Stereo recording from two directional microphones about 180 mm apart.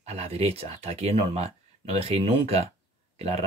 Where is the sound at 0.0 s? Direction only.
35° right (ahead or behind).